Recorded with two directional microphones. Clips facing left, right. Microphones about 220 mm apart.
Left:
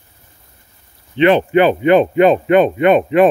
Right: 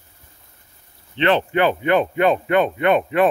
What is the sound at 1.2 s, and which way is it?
A man's voice, 15° left (ahead or behind).